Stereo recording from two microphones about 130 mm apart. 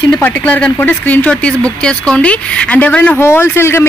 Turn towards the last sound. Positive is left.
turn(degrees=20)  # may be behind; listen again after turning